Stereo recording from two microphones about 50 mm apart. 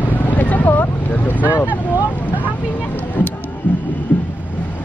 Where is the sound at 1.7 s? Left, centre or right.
Right.